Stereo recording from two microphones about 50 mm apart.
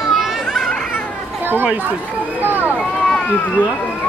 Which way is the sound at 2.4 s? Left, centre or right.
Right.